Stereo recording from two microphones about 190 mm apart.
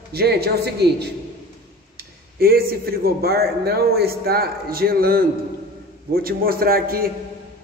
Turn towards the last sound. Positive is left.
turn(degrees=-50)  # may be behind; listen again after turning